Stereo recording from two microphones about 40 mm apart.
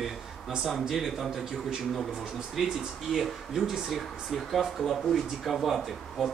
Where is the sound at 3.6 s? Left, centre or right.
Centre.